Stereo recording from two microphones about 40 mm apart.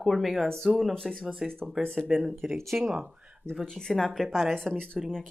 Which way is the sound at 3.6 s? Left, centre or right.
Centre.